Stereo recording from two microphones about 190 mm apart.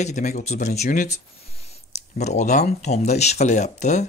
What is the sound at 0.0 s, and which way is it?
Speech, 40° left (ahead or behind).